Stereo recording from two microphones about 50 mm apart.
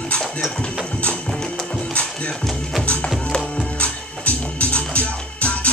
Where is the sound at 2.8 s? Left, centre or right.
Left.